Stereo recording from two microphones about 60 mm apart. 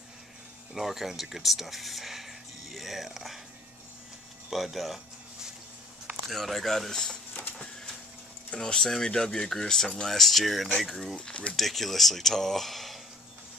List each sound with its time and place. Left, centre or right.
0.7 s speech: centre
4.5 s a sound: centre
6.2 s speech: centre
8.5 s speech: centre
11.1 s speech: centre
11.5 s speech: centre